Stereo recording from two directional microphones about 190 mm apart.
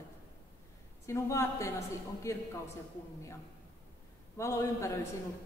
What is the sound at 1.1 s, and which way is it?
A woman's voice, 15° left (ahead or behind).